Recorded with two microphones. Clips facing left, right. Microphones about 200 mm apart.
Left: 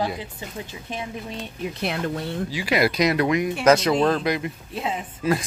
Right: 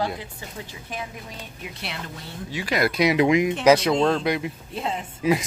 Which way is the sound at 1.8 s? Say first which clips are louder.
Left 10 dB; 50° left (ahead or behind).